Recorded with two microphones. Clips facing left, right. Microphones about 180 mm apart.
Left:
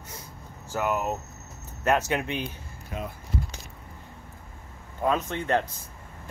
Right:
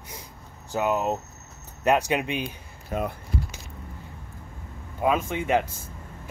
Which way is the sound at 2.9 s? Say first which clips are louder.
Right 7 dB; 40° right (ahead or behind).